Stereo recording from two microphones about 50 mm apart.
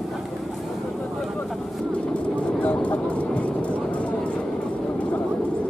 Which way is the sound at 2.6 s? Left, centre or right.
Left.